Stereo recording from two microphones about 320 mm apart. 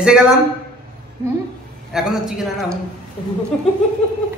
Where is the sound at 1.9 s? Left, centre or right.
Centre.